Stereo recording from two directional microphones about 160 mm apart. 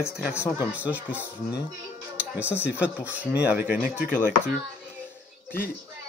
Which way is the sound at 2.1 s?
10° right (ahead or behind).